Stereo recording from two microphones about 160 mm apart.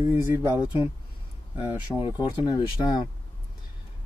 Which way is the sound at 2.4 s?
30° left (ahead or behind).